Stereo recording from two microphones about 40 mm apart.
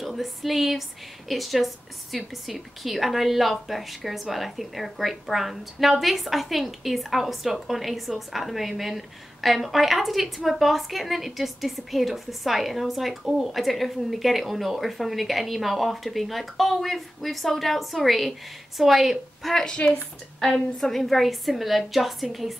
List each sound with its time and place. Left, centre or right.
0.0 s a woman's voice: centre
19.5 s a woman's voice: centre
20.9 s a woman's voice: centre